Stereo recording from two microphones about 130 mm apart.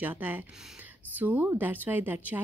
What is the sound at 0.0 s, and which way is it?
A woman's voice, 15° right (ahead or behind).